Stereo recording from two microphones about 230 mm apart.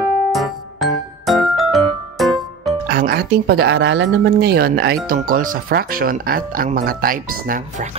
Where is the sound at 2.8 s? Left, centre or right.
Right.